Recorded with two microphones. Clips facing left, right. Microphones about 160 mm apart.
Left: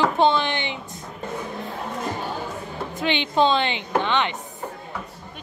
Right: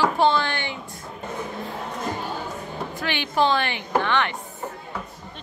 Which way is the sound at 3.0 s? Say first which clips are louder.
Left 3 dB; 20° left (ahead or behind).